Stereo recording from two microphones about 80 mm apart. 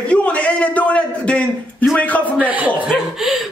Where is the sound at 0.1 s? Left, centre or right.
Centre.